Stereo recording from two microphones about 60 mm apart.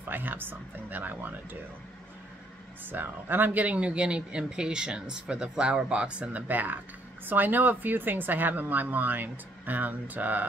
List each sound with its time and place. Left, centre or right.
0.1 s speech: right
2.8 s speech: right